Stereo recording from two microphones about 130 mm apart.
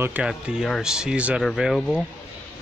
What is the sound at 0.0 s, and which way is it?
Speech, 15° right (ahead or behind).